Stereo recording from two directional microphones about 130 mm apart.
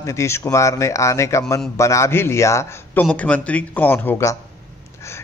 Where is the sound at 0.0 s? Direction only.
20° left (ahead or behind).